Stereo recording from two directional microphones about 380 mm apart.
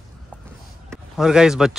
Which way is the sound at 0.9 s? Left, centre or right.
Centre.